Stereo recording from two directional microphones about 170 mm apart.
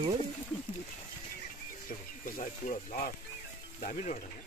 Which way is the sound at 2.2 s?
50° left (ahead or behind).